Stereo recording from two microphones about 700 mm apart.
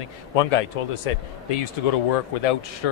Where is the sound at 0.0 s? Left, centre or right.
Left.